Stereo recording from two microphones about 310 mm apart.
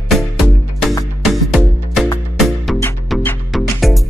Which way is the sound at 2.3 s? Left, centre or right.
Centre.